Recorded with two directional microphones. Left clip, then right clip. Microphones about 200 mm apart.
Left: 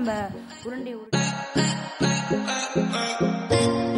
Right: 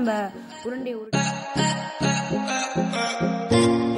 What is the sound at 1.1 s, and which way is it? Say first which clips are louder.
Music: left 1 dB; centre (ahead or behind).